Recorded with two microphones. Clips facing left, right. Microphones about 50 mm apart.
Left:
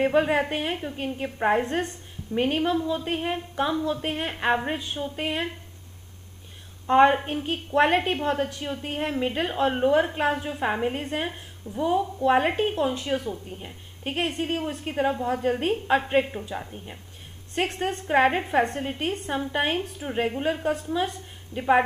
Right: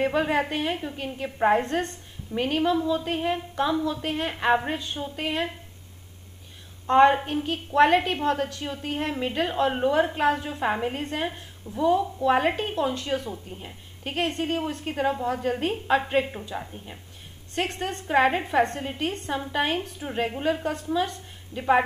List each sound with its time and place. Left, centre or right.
0.0 s a woman's voice: centre
0.7 s a woman's voice: centre
6.9 s a woman's voice: centre
17.6 s a woman's voice: left
18.4 s a woman's voice: centre